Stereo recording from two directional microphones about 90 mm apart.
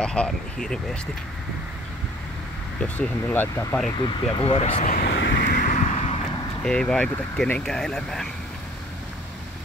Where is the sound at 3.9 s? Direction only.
75° left (ahead or behind).